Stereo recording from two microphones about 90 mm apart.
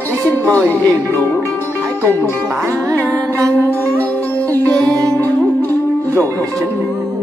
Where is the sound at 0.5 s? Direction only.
25° right (ahead or behind).